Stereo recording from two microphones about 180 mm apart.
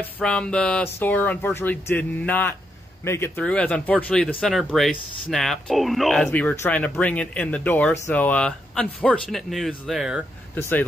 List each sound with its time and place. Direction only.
0.0 s speech: 5° left (ahead or behind)
10.5 s speech: 10° left (ahead or behind)